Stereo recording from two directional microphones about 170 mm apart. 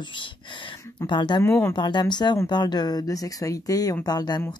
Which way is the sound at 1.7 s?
25° left (ahead or behind).